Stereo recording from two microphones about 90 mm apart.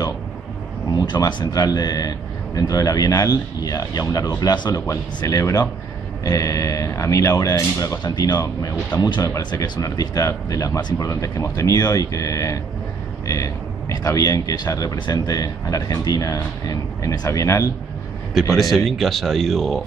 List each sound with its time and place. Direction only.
0.8 s speech: 50° left (ahead or behind)
8.0 s speech: 50° left (ahead or behind)
10.8 s speech: 55° left (ahead or behind)
11.1 s speech: 35° left (ahead or behind)
18.5 s speech: centre (ahead or behind)